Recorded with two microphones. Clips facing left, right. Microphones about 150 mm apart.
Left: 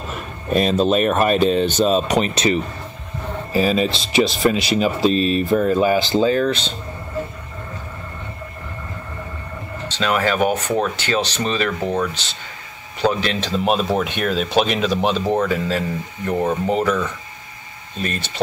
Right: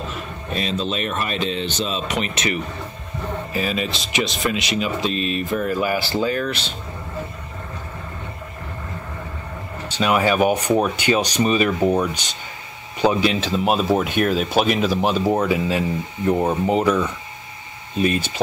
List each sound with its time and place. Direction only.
0.5 s speech: 45° left (ahead or behind); by 6.3 s 20° left (ahead or behind)
9.8 s speech: 10° right (ahead or behind)